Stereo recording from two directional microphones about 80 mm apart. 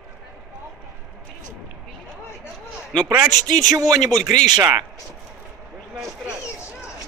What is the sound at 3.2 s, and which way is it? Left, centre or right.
Speech, right.